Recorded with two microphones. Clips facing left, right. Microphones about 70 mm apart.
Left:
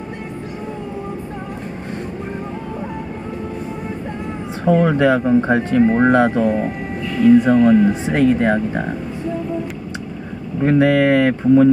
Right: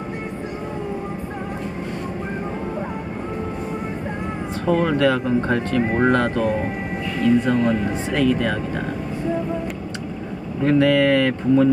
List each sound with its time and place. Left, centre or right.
4.6 s speech: centre
7.4 s speech: left
10.6 s speech: left